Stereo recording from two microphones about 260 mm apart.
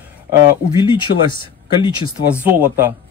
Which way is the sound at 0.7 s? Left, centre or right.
Centre.